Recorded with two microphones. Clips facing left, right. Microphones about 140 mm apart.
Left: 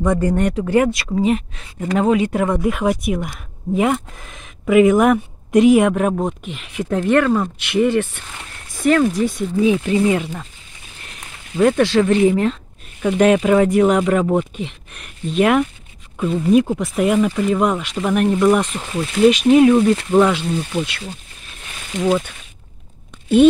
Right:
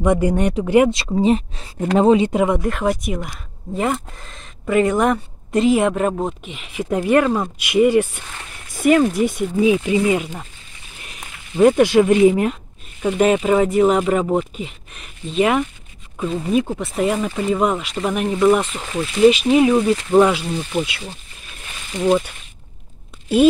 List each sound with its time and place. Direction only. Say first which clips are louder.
0.0 s speech: even; 15° right (ahead or behind)
2.6 s speech: left 2 dB; 5° left (ahead or behind)
11.5 s speech: right 2 dB; 15° right (ahead or behind)